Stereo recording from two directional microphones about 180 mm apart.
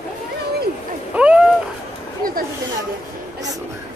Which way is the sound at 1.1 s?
5° right (ahead or behind).